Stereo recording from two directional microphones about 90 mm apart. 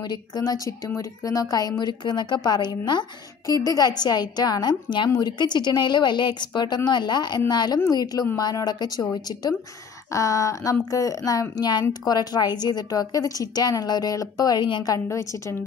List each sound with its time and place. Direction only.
0.1 s a woman's voice: 45° left (ahead or behind)
3.4 s a woman's voice: 40° left (ahead or behind)
10.1 s a woman's voice: 35° left (ahead or behind)
15.0 s a woman's voice: 35° left (ahead or behind)